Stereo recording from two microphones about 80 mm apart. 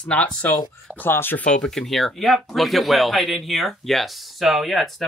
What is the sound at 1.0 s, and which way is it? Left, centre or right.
Speech, left.